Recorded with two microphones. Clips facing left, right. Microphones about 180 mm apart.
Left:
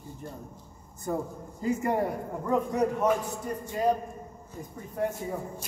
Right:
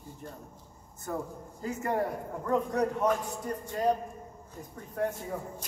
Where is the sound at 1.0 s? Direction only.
15° left (ahead or behind).